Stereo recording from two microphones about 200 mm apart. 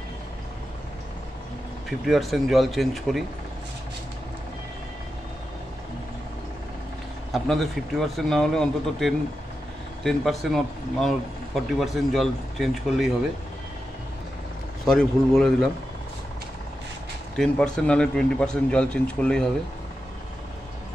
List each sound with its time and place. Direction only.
1.9 s speech: centre (ahead or behind)
7.3 s speech: centre (ahead or behind)
14.9 s speech: centre (ahead or behind)
17.4 s speech: 5° left (ahead or behind)